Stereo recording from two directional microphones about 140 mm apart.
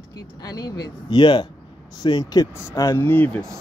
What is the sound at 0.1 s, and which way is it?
Speech, 25° left (ahead or behind).